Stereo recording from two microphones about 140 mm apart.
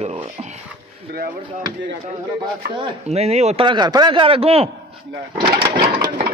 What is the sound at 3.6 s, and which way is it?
Speech, 30° right (ahead or behind).